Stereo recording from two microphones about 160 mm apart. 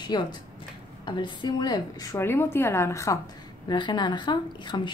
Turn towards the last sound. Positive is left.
turn(degrees=30)  # may be behind; listen again after turning